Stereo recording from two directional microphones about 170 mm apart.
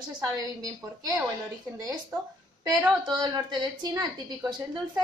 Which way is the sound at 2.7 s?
25° right (ahead or behind).